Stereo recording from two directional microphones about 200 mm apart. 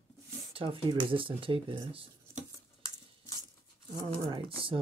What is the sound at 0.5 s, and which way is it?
Speech, 30° right (ahead or behind).